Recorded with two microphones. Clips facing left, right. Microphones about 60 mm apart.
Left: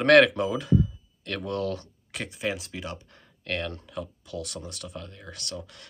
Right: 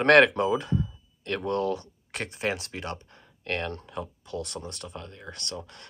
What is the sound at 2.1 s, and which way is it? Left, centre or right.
Speech, right.